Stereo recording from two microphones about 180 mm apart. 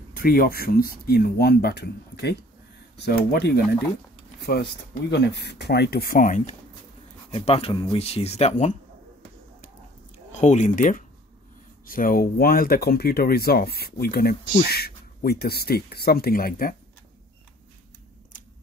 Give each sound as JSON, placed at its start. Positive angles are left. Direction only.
{"t": 0.1, "sound": "speech", "side_deg": 55}
{"t": 7.2, "sound": "speech", "side_deg": 35}
{"t": 10.3, "sound": "speech", "side_deg": 40}